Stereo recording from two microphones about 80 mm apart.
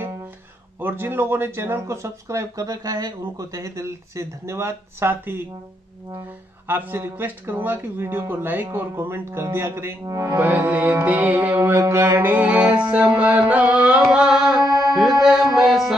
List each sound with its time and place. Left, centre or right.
0.7 s speech: right
3.5 s speech: right
6.7 s speech: right
10.0 s music: right
10.3 s speech: right
12.9 s mantra: centre
15.2 s music: centre